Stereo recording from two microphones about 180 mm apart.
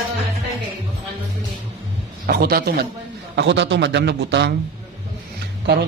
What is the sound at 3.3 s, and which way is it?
A man's voice, 75° right (ahead or behind).